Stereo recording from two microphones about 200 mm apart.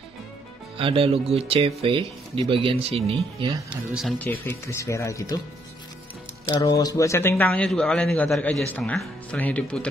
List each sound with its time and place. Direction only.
0.7 s speech: 30° right (ahead or behind)
3.9 s a man's voice: 5° left (ahead or behind)
6.5 s a man's voice: 20° left (ahead or behind)